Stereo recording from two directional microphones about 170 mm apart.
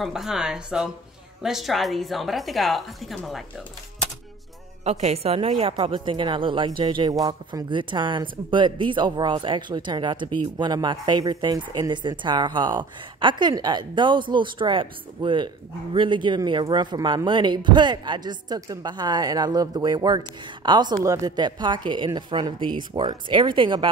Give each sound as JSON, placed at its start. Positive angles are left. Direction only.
{"t": 0.0, "sound": "a woman's voice", "side_deg": 0}
{"t": 4.8, "sound": "a woman's voice", "side_deg": -40}